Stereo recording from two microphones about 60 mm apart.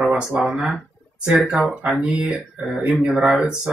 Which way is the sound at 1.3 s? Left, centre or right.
Centre.